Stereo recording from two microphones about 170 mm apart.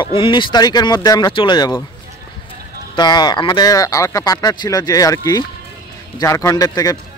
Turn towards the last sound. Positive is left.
turn(degrees=20)  # may be behind; listen again after turning